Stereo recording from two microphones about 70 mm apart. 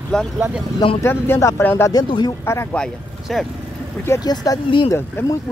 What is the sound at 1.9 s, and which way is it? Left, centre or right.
Speech, left.